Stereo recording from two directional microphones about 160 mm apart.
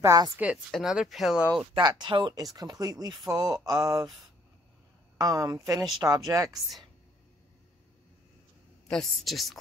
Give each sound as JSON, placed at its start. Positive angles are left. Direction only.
{"t": 0.0, "sound": "mantra", "side_deg": -20}
{"t": 0.4, "sound": "speech", "side_deg": -5}
{"t": 1.8, "sound": "mantra", "side_deg": -25}
{"t": 5.1, "sound": "mantra", "side_deg": -20}
{"t": 8.8, "sound": "speech", "side_deg": 0}